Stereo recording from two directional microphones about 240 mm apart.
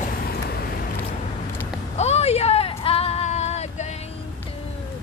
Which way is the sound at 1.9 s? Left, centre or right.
Left.